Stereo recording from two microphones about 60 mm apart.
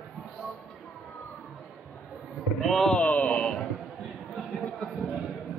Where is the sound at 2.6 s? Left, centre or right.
Centre.